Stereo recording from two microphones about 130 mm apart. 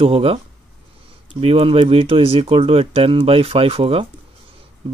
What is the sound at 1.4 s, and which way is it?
Speech, 45° right (ahead or behind).